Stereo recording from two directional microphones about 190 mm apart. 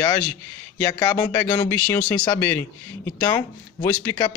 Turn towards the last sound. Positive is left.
turn(degrees=15)  # may be behind; listen again after turning